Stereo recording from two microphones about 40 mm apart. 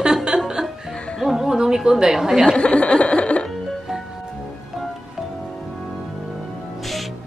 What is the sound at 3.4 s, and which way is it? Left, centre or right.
Music, centre.